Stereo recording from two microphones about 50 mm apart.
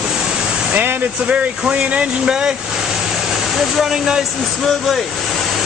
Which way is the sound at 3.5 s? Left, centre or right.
Centre.